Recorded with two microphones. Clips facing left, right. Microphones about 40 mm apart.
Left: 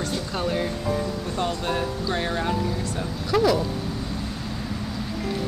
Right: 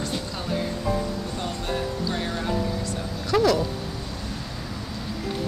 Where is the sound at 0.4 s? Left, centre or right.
Left.